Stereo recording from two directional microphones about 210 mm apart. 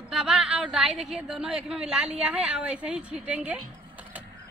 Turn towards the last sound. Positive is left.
turn(degrees=-5)  # may be behind; listen again after turning